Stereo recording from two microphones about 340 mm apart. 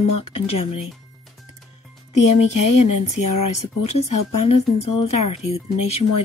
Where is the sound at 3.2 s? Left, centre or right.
Left.